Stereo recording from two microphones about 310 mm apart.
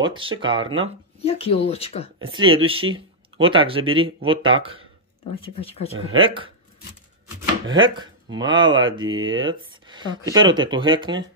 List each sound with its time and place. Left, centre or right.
0.0 s speech: centre
1.2 s speech: centre
2.1 s speech: centre
5.3 s speech: centre
5.9 s speech: centre
7.7 s speech: centre